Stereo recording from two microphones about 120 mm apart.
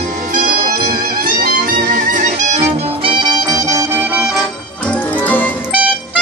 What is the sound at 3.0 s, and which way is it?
Music, 45° right (ahead or behind).